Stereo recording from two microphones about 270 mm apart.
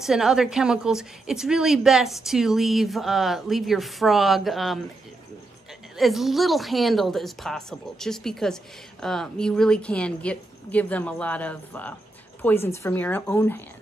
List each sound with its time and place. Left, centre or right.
0.0 s a woman's voice: centre
5.9 s a woman's voice: centre